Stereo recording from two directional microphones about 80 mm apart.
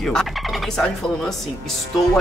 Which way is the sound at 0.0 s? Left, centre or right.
Centre.